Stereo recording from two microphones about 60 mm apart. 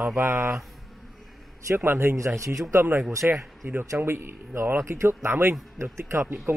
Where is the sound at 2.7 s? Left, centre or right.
Right.